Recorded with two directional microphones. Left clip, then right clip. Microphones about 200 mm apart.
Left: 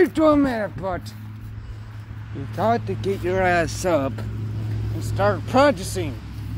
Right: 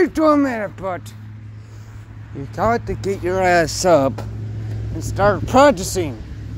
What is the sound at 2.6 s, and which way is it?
Speech, 30° right (ahead or behind).